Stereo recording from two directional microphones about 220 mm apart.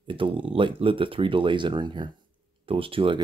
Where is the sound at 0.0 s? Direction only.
25° right (ahead or behind).